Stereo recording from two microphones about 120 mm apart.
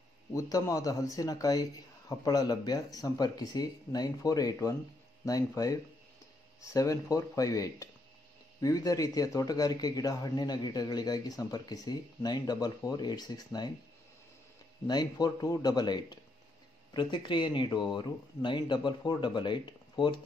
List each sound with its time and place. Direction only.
0.3 s a man's voice: 25° left (ahead or behind)
14.9 s a man's voice: 35° left (ahead or behind)